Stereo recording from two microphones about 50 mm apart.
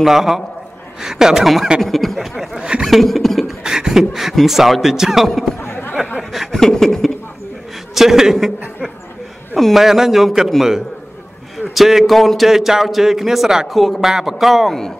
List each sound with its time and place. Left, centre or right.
0.0 s a man's voice: centre
1.8 s a man's voice: centre
3.6 s beatboxing: centre
4.5 s a man's voice: centre
5.6 s chatter: left
6.3 s chuckle: centre
6.6 s speech: centre
7.9 s a man's voice: centre
9.6 s a man's voice: centre
9.8 s a man's voice: centre
11.7 s a man's voice: centre